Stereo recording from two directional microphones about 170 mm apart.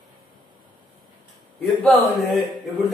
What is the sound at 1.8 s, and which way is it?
Speech, 10° left (ahead or behind).